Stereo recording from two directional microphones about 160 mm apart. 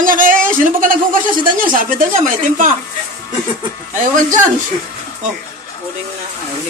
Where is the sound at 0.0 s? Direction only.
60° right (ahead or behind).